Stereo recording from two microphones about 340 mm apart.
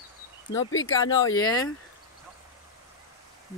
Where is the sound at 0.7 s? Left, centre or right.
Left.